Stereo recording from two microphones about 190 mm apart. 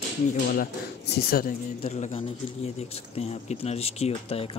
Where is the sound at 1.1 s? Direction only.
50° left (ahead or behind).